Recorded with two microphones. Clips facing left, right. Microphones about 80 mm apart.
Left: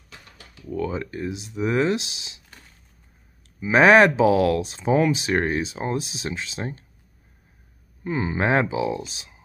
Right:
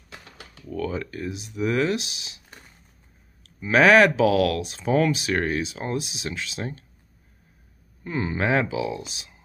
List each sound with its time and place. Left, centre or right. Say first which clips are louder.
0.7 s speech: left 2 dB; centre
3.7 s speech: left 1 dB; left
8.0 s speech: left 2 dB; centre